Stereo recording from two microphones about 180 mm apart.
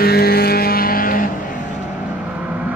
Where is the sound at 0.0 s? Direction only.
60° left (ahead or behind).